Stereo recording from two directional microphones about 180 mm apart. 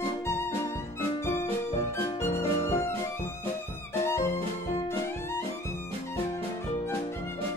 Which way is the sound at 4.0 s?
15° left (ahead or behind).